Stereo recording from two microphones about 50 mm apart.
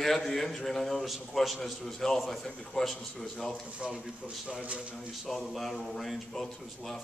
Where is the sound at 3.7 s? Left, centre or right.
Centre.